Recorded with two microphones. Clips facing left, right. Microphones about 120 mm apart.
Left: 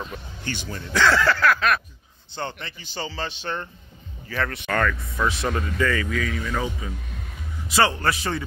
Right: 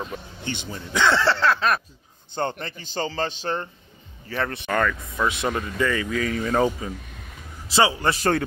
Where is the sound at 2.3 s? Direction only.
45° right (ahead or behind).